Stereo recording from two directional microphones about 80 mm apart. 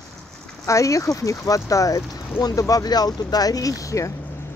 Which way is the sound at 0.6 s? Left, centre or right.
Left.